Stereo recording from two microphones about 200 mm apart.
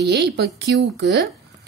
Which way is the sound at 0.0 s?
55° right (ahead or behind).